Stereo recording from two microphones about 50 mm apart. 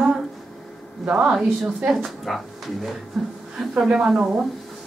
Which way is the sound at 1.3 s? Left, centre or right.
Centre.